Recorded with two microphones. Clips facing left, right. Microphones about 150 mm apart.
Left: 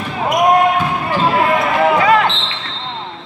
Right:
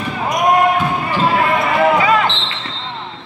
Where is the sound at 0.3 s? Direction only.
Centre (ahead or behind).